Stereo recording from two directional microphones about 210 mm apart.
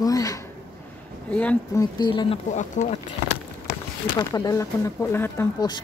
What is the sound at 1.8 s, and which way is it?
Speech, 20° left (ahead or behind).